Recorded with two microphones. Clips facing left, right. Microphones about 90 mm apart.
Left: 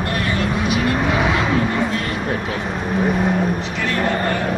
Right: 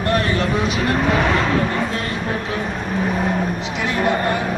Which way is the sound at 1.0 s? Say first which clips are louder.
Right 1 dB; centre (ahead or behind).